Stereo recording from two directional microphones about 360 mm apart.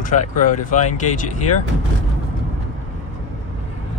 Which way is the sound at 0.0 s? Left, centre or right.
Left.